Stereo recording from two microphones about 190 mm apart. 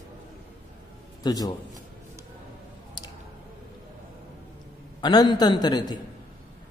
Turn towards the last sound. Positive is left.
turn(degrees=20)  # may be behind; listen again after turning